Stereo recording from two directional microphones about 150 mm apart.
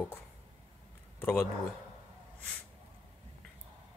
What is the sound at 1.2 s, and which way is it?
Speech, 10° left (ahead or behind).